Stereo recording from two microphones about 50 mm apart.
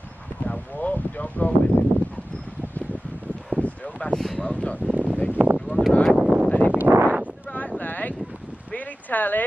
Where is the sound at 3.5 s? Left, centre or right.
Centre.